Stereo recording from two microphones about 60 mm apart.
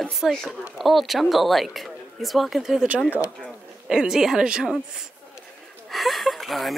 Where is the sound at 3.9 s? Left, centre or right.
Centre.